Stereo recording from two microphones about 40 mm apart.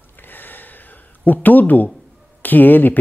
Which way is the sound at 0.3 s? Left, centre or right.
Left.